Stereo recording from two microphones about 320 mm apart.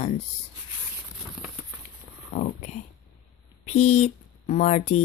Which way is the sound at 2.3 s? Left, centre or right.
Left.